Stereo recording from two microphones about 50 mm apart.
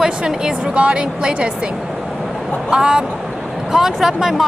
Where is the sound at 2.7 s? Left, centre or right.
Centre.